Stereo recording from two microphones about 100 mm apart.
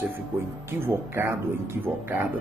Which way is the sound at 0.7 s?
25° right (ahead or behind).